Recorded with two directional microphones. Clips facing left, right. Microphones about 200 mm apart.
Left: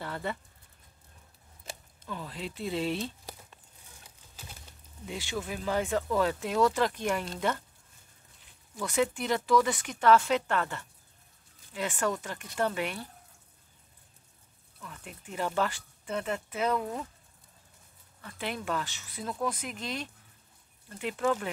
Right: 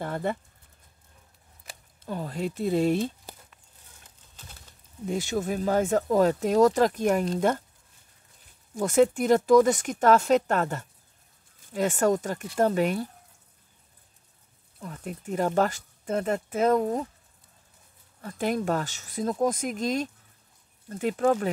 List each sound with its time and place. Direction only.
0.0 s speech: 50° right (ahead or behind)
2.0 s speech: 45° right (ahead or behind)
5.0 s speech: 45° right (ahead or behind)
8.7 s speech: 45° right (ahead or behind)
14.8 s speech: 40° right (ahead or behind)
18.2 s speech: 40° right (ahead or behind)